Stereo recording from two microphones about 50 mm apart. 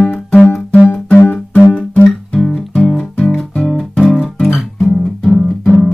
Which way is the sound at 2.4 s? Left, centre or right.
Centre.